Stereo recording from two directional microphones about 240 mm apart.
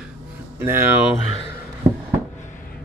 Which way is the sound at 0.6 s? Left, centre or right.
Centre.